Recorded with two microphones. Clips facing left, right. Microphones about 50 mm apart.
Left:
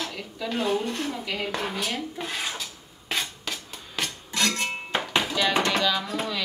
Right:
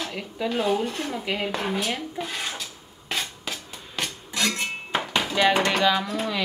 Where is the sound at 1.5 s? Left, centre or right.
Centre.